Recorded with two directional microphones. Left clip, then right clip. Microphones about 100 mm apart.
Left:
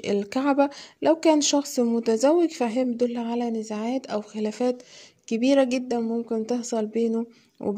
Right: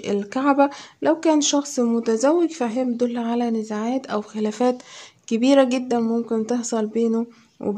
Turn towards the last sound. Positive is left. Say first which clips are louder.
# right 2 dB
turn(degrees=25)  # may be behind; listen again after turning